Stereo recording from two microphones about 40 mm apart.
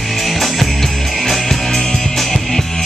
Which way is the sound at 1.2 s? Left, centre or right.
Centre.